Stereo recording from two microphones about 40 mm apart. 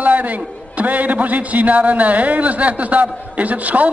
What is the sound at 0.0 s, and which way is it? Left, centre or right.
A man's voice, right.